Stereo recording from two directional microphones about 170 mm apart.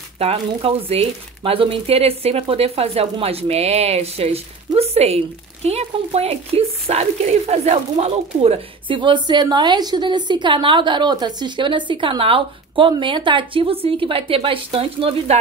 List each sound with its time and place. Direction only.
0.2 s speech: 35° right (ahead or behind)